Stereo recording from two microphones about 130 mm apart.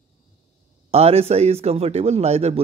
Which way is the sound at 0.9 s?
50° right (ahead or behind).